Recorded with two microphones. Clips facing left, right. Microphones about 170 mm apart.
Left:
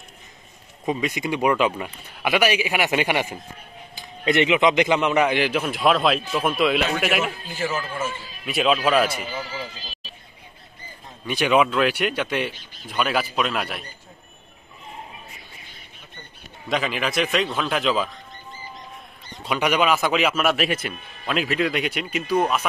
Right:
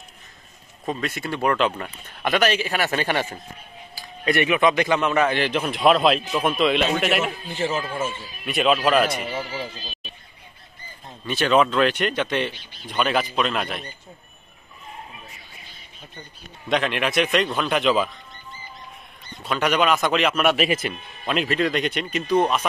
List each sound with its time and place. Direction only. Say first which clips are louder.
0.8 s a man's voice: left 3 dB; 10° left (ahead or behind)
5.7 s a man's voice: right 4 dB; centre (ahead or behind)
7.4 s speech: right 2 dB; 25° right (ahead or behind)
8.5 s a man's voice: right 1 dB; centre (ahead or behind)
11.2 s a man's voice: even; 10° left (ahead or behind)
16.6 s a man's voice: right 2 dB; centre (ahead or behind)
19.4 s speech: even; 10° left (ahead or behind)